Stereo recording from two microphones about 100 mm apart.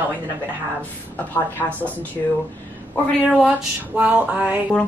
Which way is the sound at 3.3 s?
5° right (ahead or behind).